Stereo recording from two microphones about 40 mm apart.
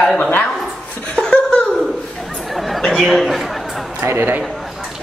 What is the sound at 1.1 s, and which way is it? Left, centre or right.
Laughter, left.